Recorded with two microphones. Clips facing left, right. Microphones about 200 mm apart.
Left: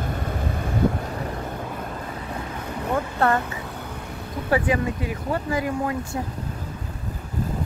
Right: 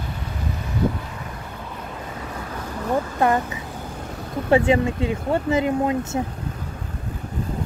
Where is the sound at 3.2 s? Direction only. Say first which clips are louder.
Right 2 dB; 15° right (ahead or behind).